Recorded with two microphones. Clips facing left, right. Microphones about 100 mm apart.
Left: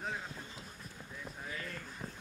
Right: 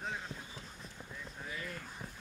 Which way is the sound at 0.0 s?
5° left (ahead or behind).